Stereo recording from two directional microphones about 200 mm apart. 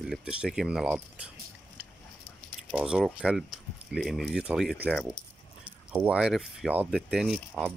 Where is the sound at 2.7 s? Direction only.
5° right (ahead or behind).